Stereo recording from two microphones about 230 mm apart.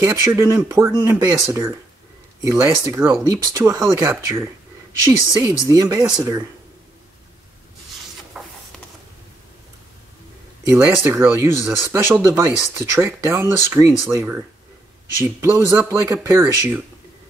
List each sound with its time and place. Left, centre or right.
0.0 s speech: centre
8.3 s music: centre
10.9 s speech: centre
15.4 s speech: centre